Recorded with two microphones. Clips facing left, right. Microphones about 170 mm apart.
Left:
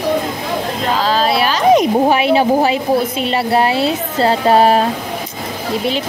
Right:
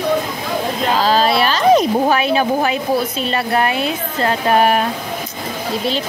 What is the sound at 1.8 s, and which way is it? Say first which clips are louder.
A woman's voice: left 2 dB; 20° left (ahead or behind).